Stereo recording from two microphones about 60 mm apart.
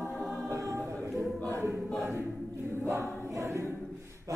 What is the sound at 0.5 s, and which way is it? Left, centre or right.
Choir, right.